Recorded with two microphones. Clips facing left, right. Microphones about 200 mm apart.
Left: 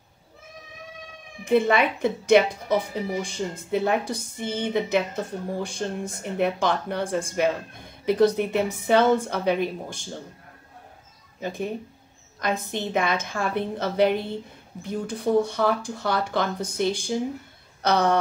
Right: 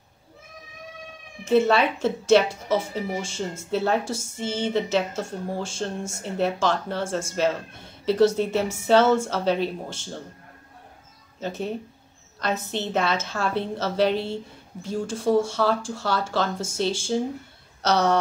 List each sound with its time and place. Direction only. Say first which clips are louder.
1.4 s a woman's voice: right 1 dB; 15° left (ahead or behind)
11.3 s a woman's voice: even; 15° left (ahead or behind)